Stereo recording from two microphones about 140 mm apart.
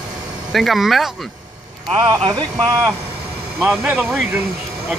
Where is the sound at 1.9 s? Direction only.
35° right (ahead or behind).